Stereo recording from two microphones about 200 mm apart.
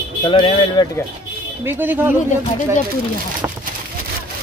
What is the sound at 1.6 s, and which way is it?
Speech, 10° right (ahead or behind).